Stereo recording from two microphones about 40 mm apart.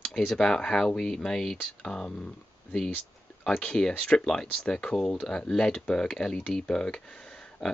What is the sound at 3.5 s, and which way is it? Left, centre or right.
Speech, left.